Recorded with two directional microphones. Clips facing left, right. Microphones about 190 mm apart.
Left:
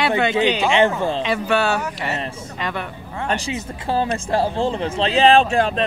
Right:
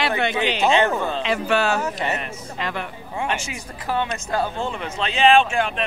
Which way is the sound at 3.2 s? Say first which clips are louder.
Left 7 dB; 35° left (ahead or behind).